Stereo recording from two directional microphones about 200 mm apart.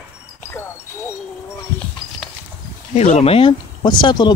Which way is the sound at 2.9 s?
35° left (ahead or behind).